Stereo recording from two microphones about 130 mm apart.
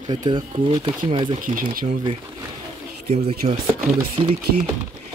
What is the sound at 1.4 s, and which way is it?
Speech, 90° right.